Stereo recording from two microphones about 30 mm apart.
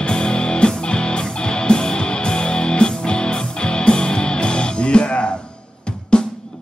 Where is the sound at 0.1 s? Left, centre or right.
Left.